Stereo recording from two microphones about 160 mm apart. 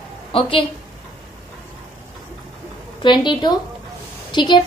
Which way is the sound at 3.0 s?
30° left (ahead or behind).